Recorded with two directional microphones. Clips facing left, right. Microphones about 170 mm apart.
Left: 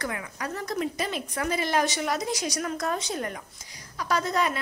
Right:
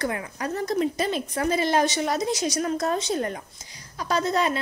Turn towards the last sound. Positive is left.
turn(degrees=-30)  # may be behind; listen again after turning